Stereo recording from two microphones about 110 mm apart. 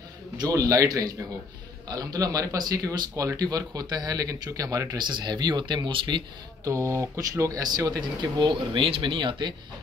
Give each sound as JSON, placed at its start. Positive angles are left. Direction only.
{"t": 0.4, "sound": "a man's voice", "side_deg": -30}
{"t": 6.6, "sound": "a man's voice", "side_deg": -30}